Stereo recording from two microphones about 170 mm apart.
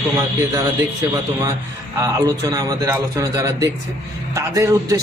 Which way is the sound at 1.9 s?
20° right (ahead or behind).